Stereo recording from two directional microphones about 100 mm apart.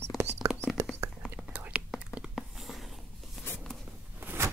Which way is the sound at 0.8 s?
30° right (ahead or behind).